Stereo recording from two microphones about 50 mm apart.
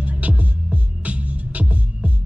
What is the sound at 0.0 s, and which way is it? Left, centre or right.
Music, right.